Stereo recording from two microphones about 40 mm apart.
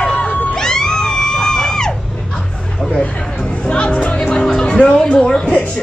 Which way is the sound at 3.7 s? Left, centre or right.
Left.